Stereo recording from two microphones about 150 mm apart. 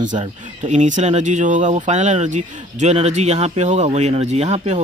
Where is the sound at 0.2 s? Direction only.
55° right (ahead or behind).